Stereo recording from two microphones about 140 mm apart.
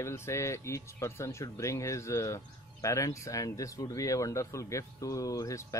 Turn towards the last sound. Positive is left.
turn(degrees=25)  # may be behind; listen again after turning